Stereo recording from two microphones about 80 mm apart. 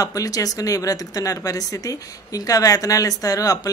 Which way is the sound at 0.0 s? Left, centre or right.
Left.